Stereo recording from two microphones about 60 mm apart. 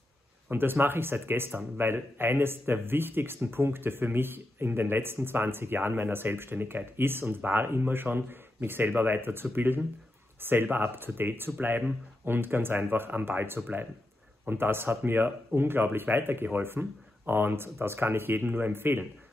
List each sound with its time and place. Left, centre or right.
0.5 s speech: right
16.8 s speech: right
17.3 s speech: right